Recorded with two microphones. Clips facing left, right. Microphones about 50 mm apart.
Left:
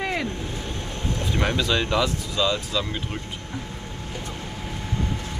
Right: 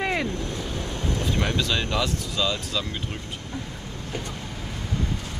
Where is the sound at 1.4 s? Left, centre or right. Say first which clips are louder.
Left 5 dB; centre.